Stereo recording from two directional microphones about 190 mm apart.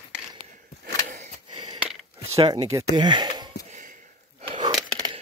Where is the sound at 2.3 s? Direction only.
30° right (ahead or behind).